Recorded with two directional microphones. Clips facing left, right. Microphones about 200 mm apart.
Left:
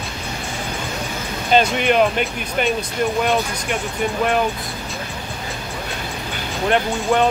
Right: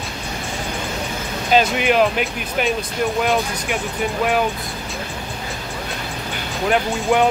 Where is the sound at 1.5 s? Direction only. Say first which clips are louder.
Even; 5° right (ahead or behind).